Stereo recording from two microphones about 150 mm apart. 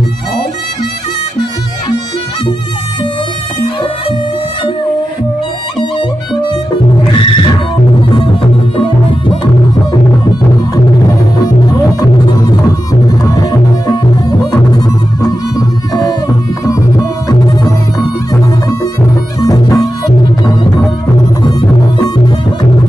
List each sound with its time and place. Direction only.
5.8 s music: 30° left (ahead or behind)
10.7 s music: 25° left (ahead or behind)
15.5 s music: 25° left (ahead or behind)
21.4 s music: 25° left (ahead or behind)